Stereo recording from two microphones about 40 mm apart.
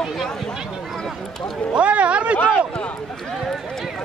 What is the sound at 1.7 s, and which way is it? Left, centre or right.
Speech, right.